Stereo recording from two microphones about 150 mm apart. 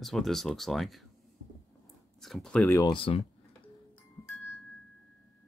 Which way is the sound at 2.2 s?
5° left (ahead or behind).